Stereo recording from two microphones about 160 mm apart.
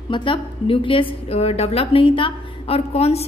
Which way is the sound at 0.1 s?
30° left (ahead or behind).